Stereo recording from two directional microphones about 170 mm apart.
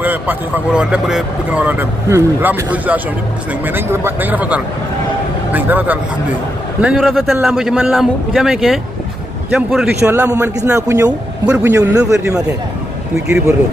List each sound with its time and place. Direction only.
0.0 s a man's voice: 10° right (ahead or behind)